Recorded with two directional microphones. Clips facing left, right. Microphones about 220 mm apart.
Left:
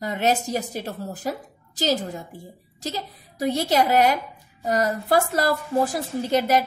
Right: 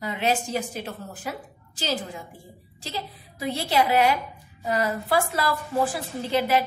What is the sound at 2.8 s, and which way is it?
A woman's voice, 40° left (ahead or behind).